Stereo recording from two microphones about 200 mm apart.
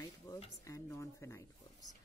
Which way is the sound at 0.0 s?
20° left (ahead or behind).